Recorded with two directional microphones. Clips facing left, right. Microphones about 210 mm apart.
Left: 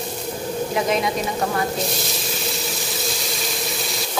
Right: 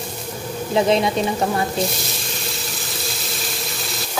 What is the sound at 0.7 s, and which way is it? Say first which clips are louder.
Speech: right 6 dB; 30° right (ahead or behind).